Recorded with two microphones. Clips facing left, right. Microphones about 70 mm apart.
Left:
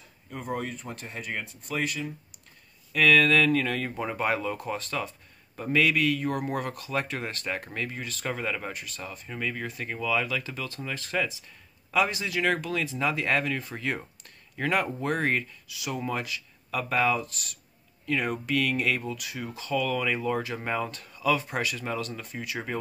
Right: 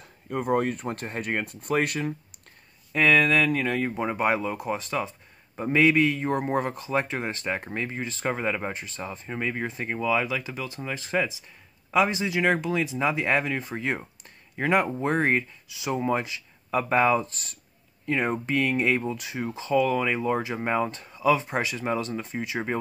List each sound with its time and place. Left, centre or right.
0.3 s speech: right
2.9 s a man's voice: right